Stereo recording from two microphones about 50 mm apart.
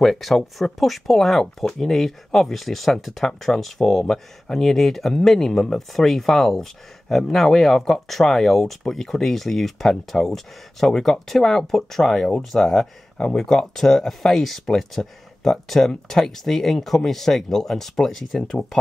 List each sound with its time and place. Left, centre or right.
0.0 s speech: centre